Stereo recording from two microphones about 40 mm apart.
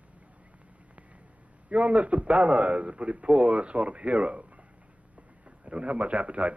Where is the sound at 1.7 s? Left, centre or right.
Right.